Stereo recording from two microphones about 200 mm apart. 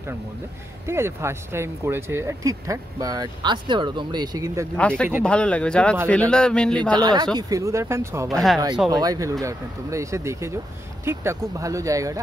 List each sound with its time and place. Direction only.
0.8 s speech: 15° right (ahead or behind)
4.7 s a man's voice: 5° left (ahead or behind)
7.0 s speech: 20° right (ahead or behind)